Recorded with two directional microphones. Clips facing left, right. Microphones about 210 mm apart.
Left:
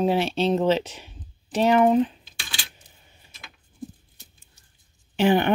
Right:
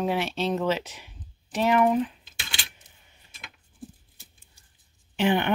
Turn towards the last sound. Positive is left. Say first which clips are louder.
# left 4 dB
turn(degrees=40)  # may be behind; listen again after turning